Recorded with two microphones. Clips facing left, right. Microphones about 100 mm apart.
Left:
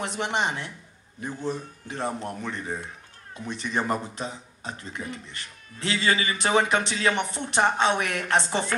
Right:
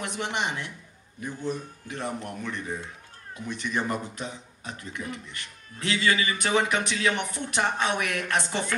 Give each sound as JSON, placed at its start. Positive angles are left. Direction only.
{"t": 0.3, "sound": "a man's voice", "side_deg": 25}